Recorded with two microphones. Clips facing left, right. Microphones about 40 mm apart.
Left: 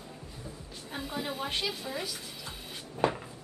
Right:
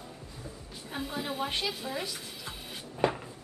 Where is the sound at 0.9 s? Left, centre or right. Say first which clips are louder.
Right 1 dB; centre.